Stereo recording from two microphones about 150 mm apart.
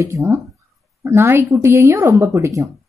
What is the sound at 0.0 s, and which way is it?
A woman's voice, 20° right (ahead or behind).